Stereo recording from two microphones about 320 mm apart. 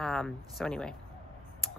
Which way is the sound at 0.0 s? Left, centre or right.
Centre.